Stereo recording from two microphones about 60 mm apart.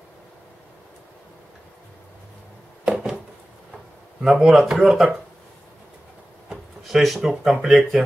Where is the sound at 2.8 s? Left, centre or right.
Centre.